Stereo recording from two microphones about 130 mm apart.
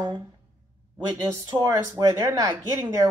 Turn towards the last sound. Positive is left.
turn(degrees=-30)  # may be behind; listen again after turning